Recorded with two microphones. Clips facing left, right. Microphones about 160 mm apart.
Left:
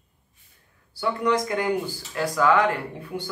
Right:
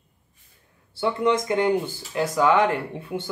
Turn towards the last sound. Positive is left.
turn(degrees=-25)  # may be behind; listen again after turning